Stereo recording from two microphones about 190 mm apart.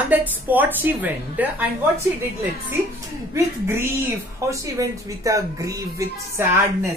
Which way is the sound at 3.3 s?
15° right (ahead or behind).